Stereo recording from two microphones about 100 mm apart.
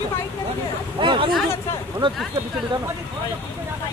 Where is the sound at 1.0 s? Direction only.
55° right (ahead or behind).